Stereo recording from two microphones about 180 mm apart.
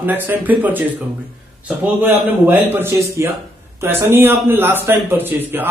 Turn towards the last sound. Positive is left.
turn(degrees=-10)  # may be behind; listen again after turning